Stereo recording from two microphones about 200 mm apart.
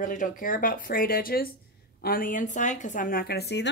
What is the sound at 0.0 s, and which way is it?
Speech, 40° left (ahead or behind).